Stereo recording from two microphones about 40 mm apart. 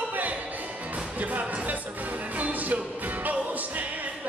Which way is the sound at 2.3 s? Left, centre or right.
Right.